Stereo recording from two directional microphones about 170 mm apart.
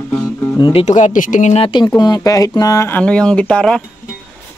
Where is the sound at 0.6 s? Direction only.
35° left (ahead or behind).